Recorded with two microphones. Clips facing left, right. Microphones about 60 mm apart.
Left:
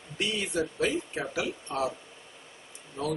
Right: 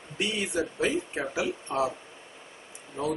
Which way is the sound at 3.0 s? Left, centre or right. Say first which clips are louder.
Right 2 dB; right.